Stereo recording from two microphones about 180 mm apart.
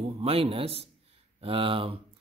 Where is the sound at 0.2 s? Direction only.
30° right (ahead or behind).